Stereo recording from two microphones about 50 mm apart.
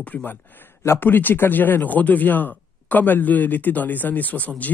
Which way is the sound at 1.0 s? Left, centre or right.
Left.